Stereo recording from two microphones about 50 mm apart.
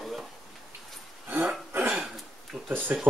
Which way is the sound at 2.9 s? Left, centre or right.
Right.